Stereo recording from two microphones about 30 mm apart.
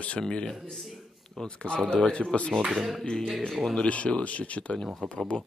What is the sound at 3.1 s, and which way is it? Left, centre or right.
Speech, left.